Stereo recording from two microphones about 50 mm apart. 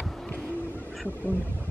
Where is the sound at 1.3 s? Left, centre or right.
Left.